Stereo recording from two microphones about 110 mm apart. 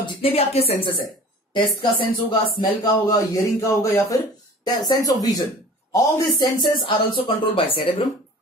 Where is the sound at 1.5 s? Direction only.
40° left (ahead or behind).